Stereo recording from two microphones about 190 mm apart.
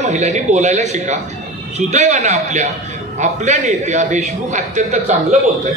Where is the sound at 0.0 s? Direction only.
35° right (ahead or behind).